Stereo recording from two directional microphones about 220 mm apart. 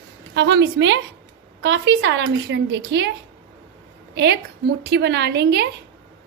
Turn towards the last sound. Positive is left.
turn(degrees=-50)  # may be behind; listen again after turning